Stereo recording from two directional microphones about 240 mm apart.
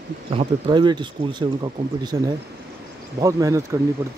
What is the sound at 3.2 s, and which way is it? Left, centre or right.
Speech, centre.